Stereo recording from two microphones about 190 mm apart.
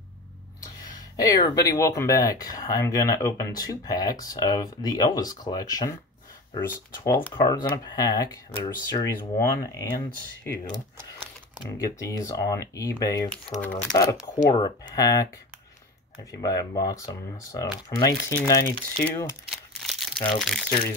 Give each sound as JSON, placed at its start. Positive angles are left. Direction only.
{"t": 0.6, "sound": "speech", "side_deg": 20}
{"t": 13.3, "sound": "speech", "side_deg": 5}
{"t": 14.2, "sound": "speech", "side_deg": 20}
{"t": 16.3, "sound": "speech", "side_deg": 20}
{"t": 19.5, "sound": "crumpling", "side_deg": 0}
{"t": 20.3, "sound": "speech", "side_deg": 0}